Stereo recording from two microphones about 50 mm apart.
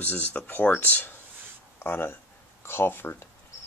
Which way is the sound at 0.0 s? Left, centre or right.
Left.